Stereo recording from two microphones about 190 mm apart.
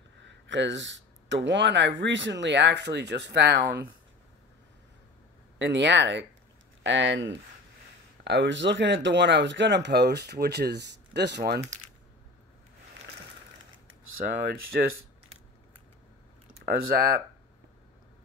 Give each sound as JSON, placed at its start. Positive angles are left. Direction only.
{"t": 0.2, "sound": "speech", "side_deg": -70}
{"t": 5.6, "sound": "speech", "side_deg": -70}
{"t": 14.1, "sound": "speech", "side_deg": -50}
{"t": 16.6, "sound": "speech", "side_deg": -50}